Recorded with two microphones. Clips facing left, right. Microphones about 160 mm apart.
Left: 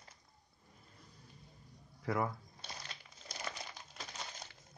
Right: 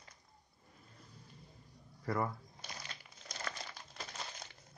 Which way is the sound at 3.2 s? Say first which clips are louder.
Even; 15° left (ahead or behind).